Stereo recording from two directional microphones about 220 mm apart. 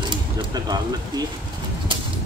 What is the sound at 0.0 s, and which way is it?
Speech, 20° right (ahead or behind).